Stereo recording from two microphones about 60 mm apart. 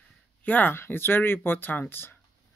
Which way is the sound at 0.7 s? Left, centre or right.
Left.